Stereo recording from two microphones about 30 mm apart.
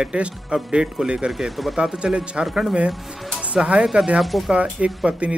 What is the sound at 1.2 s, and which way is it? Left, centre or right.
Speech, centre.